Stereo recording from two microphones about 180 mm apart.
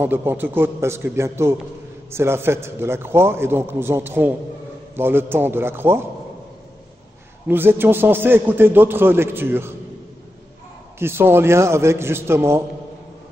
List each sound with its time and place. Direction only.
0.0 s a man's voice: 10° right (ahead or behind)
7.4 s a man's voice: 10° right (ahead or behind)
11.0 s a man's voice: 15° right (ahead or behind)